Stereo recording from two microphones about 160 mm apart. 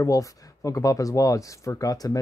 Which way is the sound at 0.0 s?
20° left (ahead or behind).